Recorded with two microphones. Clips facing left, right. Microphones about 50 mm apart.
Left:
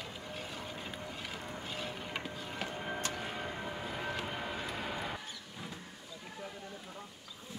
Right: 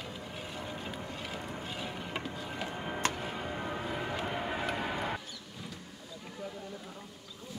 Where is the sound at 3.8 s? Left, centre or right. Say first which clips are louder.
Right 3 dB; centre.